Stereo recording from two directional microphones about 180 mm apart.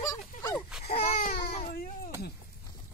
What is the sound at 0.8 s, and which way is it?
Baby cry, 55° left (ahead or behind).